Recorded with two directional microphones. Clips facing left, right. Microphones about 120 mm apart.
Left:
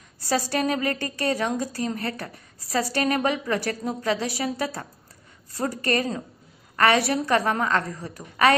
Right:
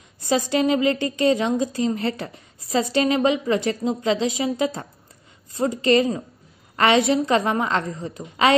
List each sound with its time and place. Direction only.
0.2 s a woman's voice: 20° right (ahead or behind)